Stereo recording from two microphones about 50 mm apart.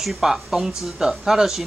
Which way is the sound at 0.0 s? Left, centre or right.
Centre.